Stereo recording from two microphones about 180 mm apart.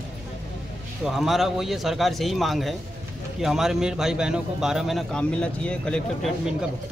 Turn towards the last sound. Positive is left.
turn(degrees=0)  # may be behind; listen again after turning